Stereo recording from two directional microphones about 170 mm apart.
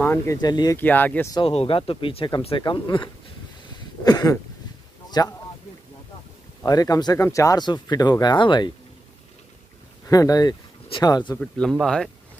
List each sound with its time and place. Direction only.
0.0 s speech: 10° left (ahead or behind)
0.4 s speech: 25° left (ahead or behind)
0.7 s speech: 10° left (ahead or behind)
1.3 s speech: 35° left (ahead or behind)
6.6 s speech: 20° left (ahead or behind)
10.0 s speech: 20° left (ahead or behind)
11.3 s speech: 5° left (ahead or behind)